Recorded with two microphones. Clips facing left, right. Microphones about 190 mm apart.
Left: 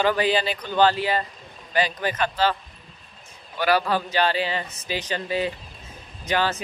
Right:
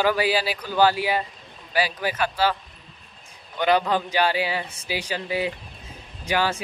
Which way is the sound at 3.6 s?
20° right (ahead or behind).